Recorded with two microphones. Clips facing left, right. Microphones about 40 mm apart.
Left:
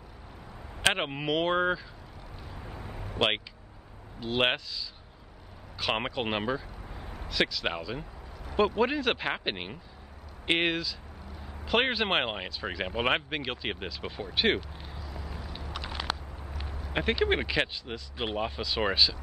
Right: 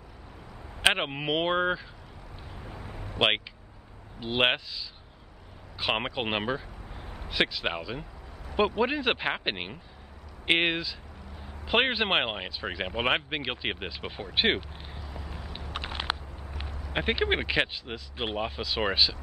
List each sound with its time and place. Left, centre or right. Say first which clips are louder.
0.8 s speech: right 2 dB; centre
2.6 s a sound: even; centre
3.2 s speech: right 2 dB; right
6.9 s a sound: left 1 dB; centre
7.2 s speech: right 1 dB; right
7.6 s speech: right 1 dB; centre
15.0 s vehicle: even; right
15.6 s a sound: right 2 dB; right
16.9 s speech: even; centre
18.4 s speech: even; centre